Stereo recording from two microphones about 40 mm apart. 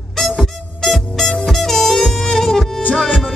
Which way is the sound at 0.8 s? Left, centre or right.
Centre.